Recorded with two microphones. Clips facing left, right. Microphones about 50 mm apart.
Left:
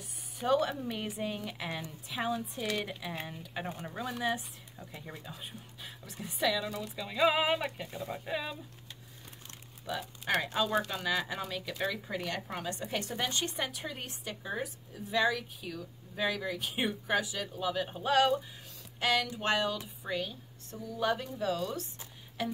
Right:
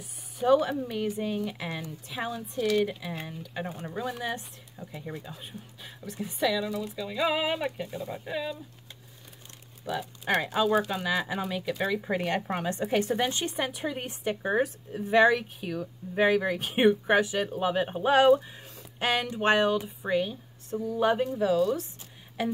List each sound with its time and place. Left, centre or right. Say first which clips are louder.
0.0 s speech: right 7 dB; centre
10.3 s speech: right 5 dB; centre
12.0 s a woman's voice: right 8 dB; right; by 14.1 s centre
14.2 s speech: right 15 dB; right
14.5 s a woman's voice: right 10 dB; right; by 22.5 s centre